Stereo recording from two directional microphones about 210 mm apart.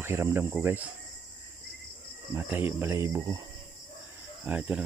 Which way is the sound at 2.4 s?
10° right (ahead or behind).